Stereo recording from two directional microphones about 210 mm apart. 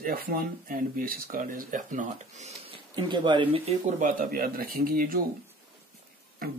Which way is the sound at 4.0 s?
40° right (ahead or behind).